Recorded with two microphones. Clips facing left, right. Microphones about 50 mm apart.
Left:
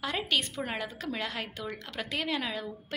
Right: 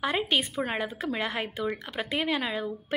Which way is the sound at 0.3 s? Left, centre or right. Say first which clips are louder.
Right 3 dB; right.